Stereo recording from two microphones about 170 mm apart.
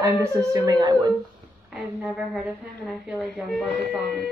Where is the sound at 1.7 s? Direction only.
5° right (ahead or behind).